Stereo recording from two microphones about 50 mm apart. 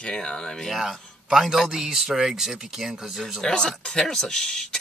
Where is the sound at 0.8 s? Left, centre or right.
Centre.